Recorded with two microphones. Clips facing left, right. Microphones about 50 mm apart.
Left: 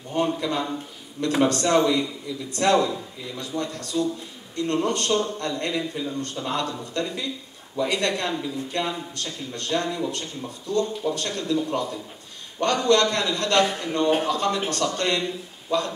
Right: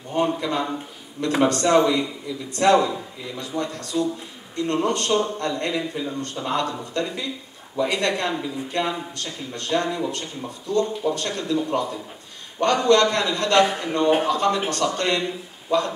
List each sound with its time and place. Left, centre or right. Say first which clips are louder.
0.4 s a man's voice: right 1 dB; centre
9.1 s a man's voice: right 1 dB; centre
10.7 s a man's voice: right 2 dB; centre